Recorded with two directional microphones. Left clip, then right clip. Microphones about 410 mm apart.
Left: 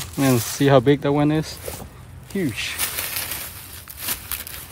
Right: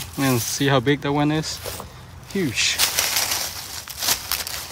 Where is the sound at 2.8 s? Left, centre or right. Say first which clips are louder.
Right 7 dB; centre.